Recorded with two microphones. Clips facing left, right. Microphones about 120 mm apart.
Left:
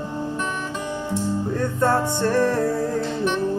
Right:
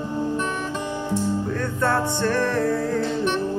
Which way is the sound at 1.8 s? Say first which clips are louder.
Left 2 dB; 15° left (ahead or behind).